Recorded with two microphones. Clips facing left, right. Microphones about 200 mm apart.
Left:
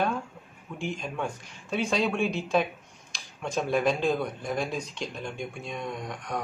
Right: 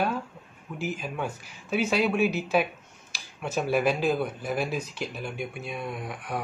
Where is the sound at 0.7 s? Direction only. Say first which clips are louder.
Right 1 dB; 5° right (ahead or behind).